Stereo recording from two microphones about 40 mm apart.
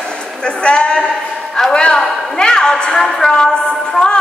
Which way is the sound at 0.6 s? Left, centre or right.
Left.